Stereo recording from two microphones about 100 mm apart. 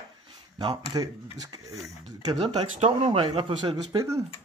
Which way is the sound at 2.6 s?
90° right.